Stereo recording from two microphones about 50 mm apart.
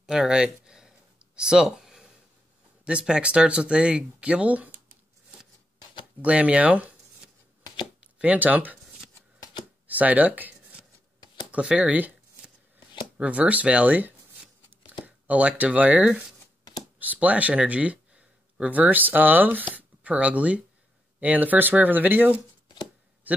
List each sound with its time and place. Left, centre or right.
0.0 s a sound: centre
2.8 s speech: centre
6.2 s speech: right
8.2 s speech: right
9.8 s speech: right
11.5 s speech: right
13.2 s tearing: right
17.0 s speech: right
23.3 s a sound: right